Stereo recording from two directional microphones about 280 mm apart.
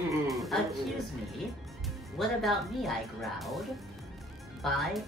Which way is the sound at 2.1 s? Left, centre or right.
Centre.